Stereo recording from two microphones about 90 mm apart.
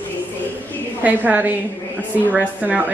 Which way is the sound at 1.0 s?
20° right (ahead or behind).